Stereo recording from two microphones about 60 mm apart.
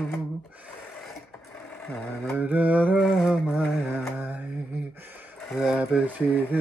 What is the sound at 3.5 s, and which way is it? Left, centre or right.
Music, centre.